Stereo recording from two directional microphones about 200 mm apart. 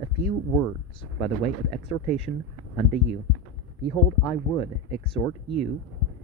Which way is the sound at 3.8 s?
25° left (ahead or behind).